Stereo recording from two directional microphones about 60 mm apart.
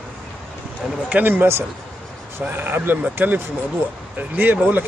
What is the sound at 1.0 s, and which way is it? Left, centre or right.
A man's voice, right.